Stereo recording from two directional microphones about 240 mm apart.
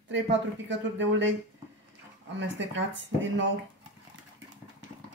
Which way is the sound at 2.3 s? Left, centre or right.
Right.